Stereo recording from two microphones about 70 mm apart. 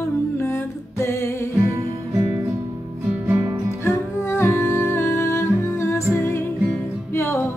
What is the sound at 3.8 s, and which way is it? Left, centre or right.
Music, left.